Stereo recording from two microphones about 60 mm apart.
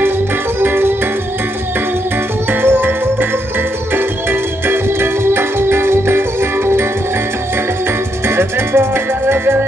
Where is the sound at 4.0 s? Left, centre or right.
Right.